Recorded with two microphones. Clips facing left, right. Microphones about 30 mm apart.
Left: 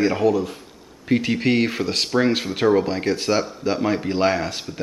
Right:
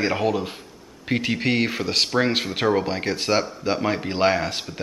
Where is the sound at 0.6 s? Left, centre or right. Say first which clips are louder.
Even; centre.